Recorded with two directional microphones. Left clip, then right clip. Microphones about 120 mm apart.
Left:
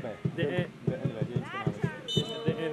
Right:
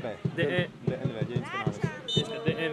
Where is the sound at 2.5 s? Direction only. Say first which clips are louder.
Right 2 dB; 45° right (ahead or behind).